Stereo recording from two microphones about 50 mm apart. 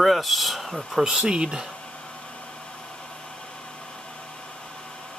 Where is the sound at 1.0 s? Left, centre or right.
Centre.